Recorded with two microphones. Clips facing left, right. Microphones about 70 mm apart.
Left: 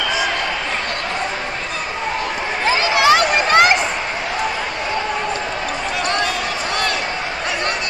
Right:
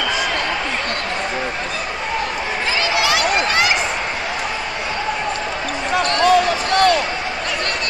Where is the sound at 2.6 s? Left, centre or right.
Left.